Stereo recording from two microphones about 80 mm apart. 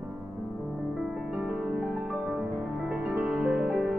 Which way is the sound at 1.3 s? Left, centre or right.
Centre.